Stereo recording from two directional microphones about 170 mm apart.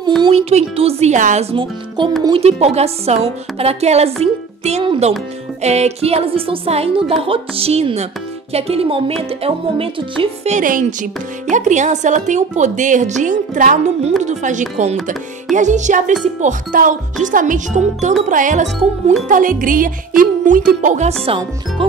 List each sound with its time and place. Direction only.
0.2 s speech: 35° right (ahead or behind)
10.5 s a woman's voice: 50° right (ahead or behind)